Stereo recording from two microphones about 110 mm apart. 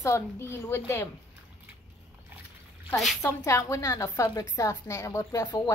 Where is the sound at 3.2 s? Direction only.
25° left (ahead or behind).